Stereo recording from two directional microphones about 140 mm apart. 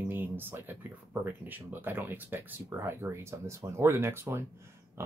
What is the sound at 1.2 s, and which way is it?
Speech, 15° right (ahead or behind).